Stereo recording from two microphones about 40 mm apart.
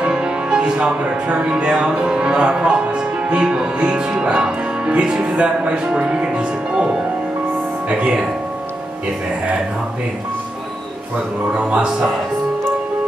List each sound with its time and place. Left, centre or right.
0.0 s music: right
1.5 s speech: centre
7.9 s speech: right
11.5 s speech: right